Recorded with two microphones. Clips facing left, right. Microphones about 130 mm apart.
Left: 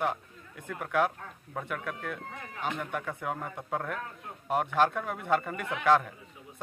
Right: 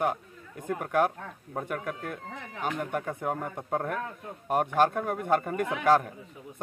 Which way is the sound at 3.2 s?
45° right (ahead or behind).